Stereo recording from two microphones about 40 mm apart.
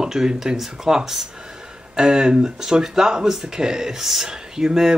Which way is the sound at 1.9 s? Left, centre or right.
Right.